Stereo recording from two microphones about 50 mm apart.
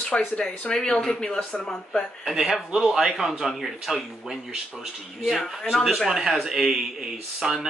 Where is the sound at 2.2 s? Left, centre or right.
Centre.